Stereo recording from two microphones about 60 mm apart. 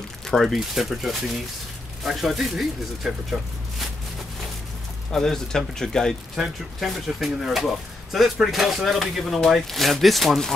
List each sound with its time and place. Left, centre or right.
0.3 s speech: centre
5.1 s speech: centre
6.3 s speech: centre